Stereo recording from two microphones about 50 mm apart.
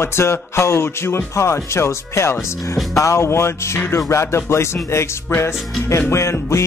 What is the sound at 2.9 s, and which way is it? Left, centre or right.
A man's voice, left.